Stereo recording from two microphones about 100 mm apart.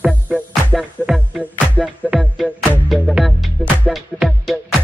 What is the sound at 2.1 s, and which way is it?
Music, centre (ahead or behind).